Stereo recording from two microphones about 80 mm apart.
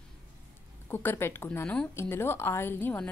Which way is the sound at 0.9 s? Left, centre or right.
Left.